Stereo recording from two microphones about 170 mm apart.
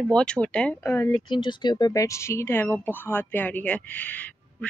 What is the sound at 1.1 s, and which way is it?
Speech, 25° left (ahead or behind).